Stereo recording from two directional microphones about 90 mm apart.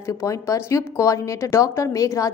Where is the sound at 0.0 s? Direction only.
35° left (ahead or behind).